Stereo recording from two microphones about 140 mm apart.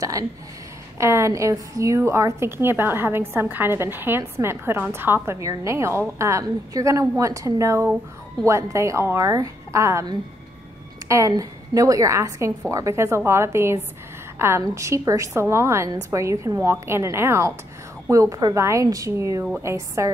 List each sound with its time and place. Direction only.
0.9 s a woman's voice: 20° right (ahead or behind)